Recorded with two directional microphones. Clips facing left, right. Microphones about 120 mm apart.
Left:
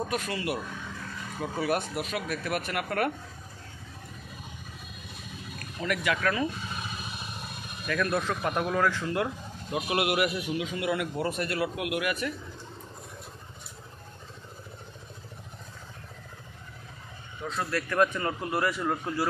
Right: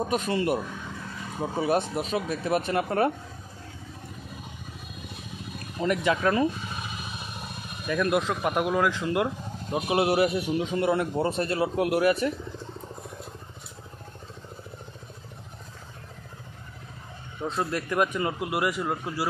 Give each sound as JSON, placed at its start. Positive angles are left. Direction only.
{"t": 0.0, "sound": "a man's voice", "side_deg": -20}
{"t": 1.4, "sound": "a man's voice", "side_deg": -25}
{"t": 5.8, "sound": "a man's voice", "side_deg": -25}
{"t": 7.8, "sound": "a man's voice", "side_deg": -20}
{"t": 17.4, "sound": "speech", "side_deg": -25}